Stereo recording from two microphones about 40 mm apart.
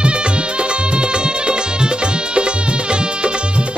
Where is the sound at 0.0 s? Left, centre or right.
Right.